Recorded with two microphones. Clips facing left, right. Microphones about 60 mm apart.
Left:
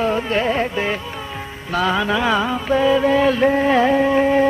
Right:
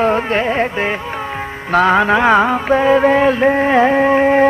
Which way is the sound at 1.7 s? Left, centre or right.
Right.